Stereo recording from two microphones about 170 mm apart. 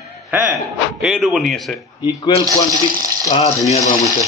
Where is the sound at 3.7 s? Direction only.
40° left (ahead or behind).